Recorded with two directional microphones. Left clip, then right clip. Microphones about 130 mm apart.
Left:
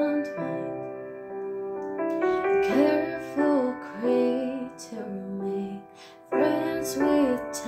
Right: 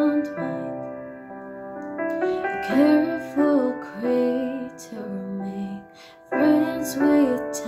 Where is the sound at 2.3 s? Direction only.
15° right (ahead or behind).